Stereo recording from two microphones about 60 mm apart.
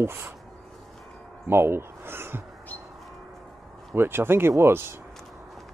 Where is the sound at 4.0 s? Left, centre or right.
Right.